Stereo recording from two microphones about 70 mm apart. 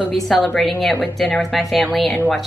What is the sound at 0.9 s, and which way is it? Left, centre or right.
Speech, left.